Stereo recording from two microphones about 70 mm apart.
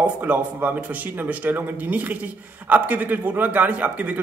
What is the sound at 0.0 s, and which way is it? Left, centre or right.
A man's voice, right.